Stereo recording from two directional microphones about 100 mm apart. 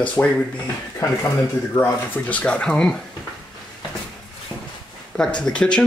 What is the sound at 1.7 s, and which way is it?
Speech, 15° left (ahead or behind).